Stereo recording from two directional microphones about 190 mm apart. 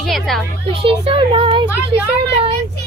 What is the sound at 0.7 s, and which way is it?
Speech, 30° right (ahead or behind).